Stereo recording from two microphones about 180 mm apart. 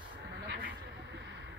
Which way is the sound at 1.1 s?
80° right.